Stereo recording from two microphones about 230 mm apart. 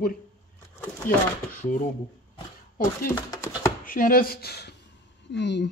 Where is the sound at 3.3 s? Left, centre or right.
Centre.